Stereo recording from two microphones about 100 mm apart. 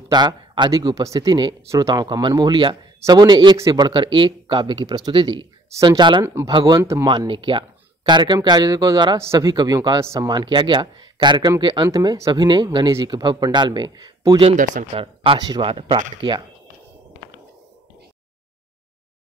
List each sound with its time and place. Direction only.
0.1 s speech: 45° right (ahead or behind)
0.7 s a man's voice: 35° right (ahead or behind); by 6.2 s 50° right (ahead or behind)
6.2 s speech: 30° right (ahead or behind)
7.1 s speech: 55° right (ahead or behind); by 10.2 s 30° right (ahead or behind)
10.2 s a man's voice: 45° right (ahead or behind)
11.9 s a man's voice: 40° right (ahead or behind)
14.4 s speech: 70° right (ahead or behind)
15.3 s speech: 40° right (ahead or behind)
15.6 s speech: 60° right (ahead or behind)